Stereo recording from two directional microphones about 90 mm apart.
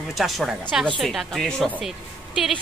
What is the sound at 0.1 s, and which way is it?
A woman's voice, centre (ahead or behind).